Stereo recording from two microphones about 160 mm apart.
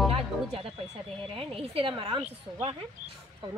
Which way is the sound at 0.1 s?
35° right (ahead or behind).